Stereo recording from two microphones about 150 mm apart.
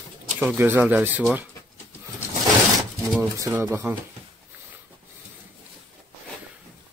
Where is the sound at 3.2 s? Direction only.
15° right (ahead or behind).